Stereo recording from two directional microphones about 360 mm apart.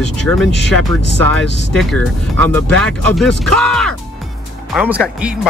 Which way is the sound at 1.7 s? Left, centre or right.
Centre.